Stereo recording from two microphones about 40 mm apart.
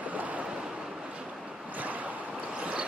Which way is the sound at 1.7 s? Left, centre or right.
Right.